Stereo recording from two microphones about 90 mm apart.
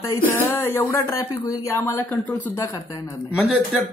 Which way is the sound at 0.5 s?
25° left (ahead or behind).